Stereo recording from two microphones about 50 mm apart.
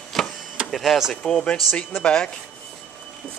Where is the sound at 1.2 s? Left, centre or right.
Centre.